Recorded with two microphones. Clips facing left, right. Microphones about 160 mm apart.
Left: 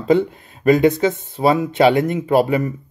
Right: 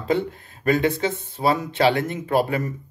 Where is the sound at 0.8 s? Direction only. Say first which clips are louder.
Left 7 dB; 15° left (ahead or behind).